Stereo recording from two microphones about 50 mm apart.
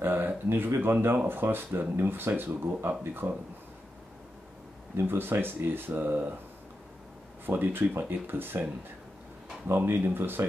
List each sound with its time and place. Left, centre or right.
0.0 s a sound: right
1.0 s speech: right
4.9 s speech: right
7.4 s speech: right
9.7 s speech: right